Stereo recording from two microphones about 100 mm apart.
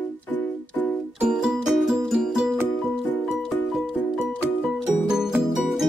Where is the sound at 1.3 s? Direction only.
5° right (ahead or behind).